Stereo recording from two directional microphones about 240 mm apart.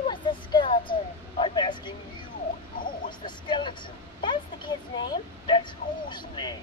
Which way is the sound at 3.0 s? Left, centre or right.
Centre.